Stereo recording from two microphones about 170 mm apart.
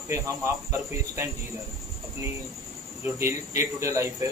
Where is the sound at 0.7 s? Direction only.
15° right (ahead or behind).